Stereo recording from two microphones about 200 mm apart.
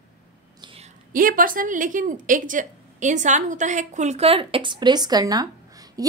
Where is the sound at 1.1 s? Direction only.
45° right (ahead or behind).